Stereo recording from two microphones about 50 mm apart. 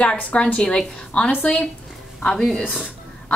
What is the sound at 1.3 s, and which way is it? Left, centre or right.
Speech, left.